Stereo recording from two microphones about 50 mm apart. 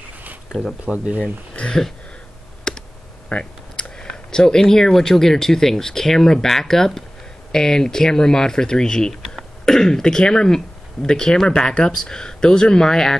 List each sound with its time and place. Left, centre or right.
0.8 s speech: right
1.2 s speech: left
2.7 s clicking: centre
3.3 s speech: left